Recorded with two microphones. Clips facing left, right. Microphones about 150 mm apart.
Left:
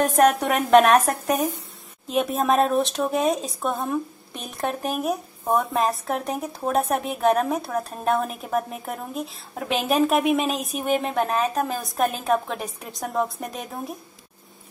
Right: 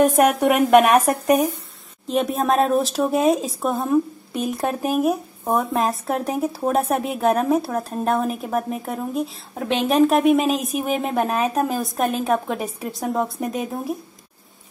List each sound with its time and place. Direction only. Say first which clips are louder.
0.0 s speech: right 3 dB; 10° right (ahead or behind)
2.0 s speech: right 2 dB; centre (ahead or behind)